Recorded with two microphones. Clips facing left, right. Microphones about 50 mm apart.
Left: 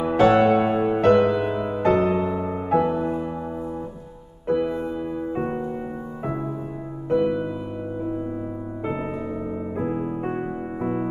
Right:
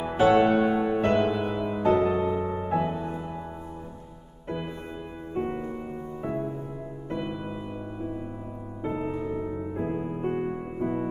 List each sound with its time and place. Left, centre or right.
0.2 s music: left
1.8 s music: left
2.7 s music: left
3.0 s music: left
4.5 s music: left
7.1 s music: left
9.0 s music: left
9.8 s music: left